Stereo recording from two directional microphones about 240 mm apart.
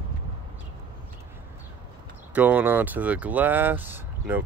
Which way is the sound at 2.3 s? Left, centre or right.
Centre.